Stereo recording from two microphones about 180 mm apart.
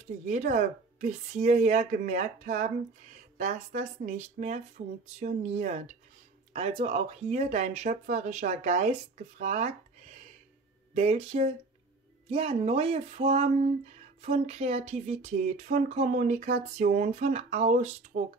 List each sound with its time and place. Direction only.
0.3 s speech: 40° right (ahead or behind)
11.0 s speech: 35° right (ahead or behind)